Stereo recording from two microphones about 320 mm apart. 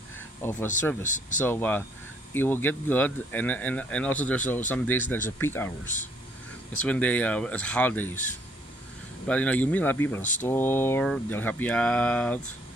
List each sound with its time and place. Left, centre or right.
0.4 s speech: centre
1.0 s speech: left
1.4 s speech: centre
9.3 s speech: centre